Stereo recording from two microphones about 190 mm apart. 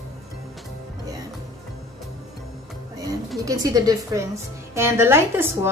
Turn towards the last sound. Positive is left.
turn(degrees=-10)  # may be behind; listen again after turning